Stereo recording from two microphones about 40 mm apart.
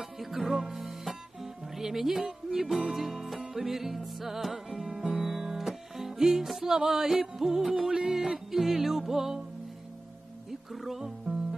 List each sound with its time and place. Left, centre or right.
0.0 s music: centre
4.8 s music: centre
10.7 s music: centre